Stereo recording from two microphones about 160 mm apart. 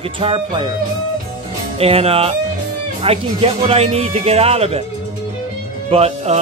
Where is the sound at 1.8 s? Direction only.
40° right (ahead or behind).